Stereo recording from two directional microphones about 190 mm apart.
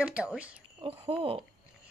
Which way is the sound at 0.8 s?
30° right (ahead or behind).